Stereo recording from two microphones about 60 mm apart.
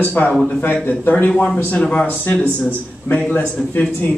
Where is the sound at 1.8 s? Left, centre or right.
Centre.